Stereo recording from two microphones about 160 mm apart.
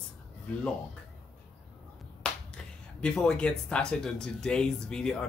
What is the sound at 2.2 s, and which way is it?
Finger snapping, 5° left (ahead or behind).